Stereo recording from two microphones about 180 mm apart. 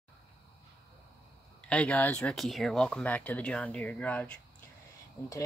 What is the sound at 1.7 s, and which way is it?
Speech, 5° left (ahead or behind).